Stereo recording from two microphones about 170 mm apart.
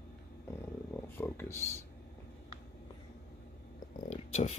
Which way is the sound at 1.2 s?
15° left (ahead or behind).